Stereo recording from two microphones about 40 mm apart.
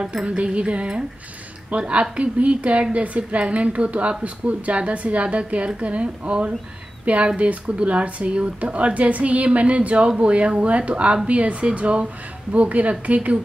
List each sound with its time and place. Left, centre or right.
0.0 s music: right
1.7 s a woman's voice: right
5.2 s music: right
5.8 s a woman's voice: right
10.6 s music: right
11.2 s a woman's voice: right